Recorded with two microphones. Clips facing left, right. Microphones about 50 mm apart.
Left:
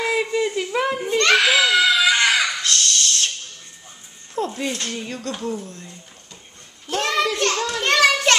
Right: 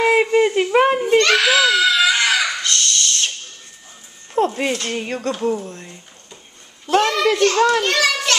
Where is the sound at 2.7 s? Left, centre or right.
Centre.